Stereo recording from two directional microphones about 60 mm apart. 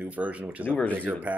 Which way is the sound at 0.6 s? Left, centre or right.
Left.